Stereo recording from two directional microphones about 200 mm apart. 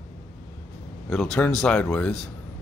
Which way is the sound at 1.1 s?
5° left (ahead or behind).